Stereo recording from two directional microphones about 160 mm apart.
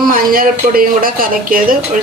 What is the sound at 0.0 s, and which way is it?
A woman's voice, 60° right (ahead or behind).